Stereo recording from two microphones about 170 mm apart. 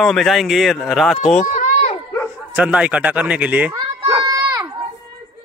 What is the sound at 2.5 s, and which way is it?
Speech, 5° right (ahead or behind).